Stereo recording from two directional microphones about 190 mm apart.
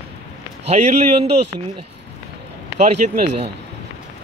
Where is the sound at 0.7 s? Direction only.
35° right (ahead or behind).